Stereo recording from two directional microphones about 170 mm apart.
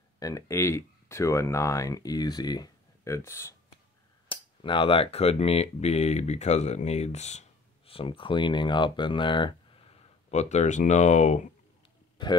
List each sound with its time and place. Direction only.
0.2 s speech: 20° left (ahead or behind)
4.6 s speech: 30° left (ahead or behind)